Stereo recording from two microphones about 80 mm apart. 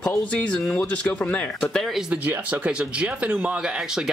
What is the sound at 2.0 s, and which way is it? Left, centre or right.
Speech, centre.